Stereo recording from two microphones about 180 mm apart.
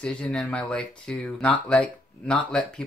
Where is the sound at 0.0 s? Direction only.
5° left (ahead or behind).